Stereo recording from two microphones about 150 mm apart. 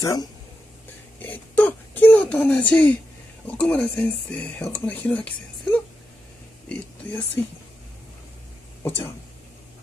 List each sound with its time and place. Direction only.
0.0 s speech: 25° left (ahead or behind)
1.2 s speech: 10° left (ahead or behind)
8.8 s speech: 15° left (ahead or behind)